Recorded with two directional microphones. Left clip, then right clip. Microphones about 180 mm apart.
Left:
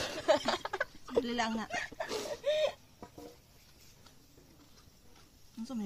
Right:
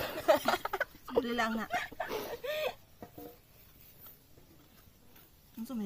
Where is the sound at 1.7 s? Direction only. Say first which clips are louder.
Right 2 dB; 5° left (ahead or behind).